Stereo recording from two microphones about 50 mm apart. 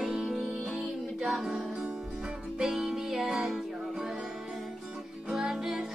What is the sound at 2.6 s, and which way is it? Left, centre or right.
Music, centre.